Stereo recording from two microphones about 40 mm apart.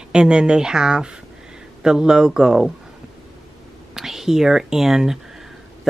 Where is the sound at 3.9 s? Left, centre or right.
Centre.